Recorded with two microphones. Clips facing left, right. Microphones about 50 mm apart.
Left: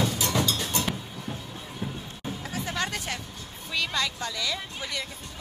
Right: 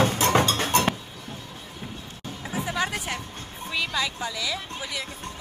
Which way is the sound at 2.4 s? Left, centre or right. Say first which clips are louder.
Right 4 dB; centre.